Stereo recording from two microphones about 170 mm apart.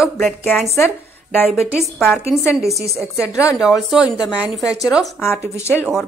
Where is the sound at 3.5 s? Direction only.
Centre (ahead or behind).